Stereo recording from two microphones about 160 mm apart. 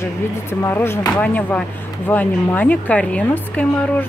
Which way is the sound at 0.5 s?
15° left (ahead or behind).